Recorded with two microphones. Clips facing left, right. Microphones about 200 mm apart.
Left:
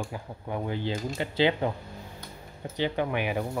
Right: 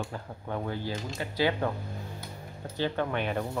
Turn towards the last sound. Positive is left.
turn(degrees=10)  # may be behind; listen again after turning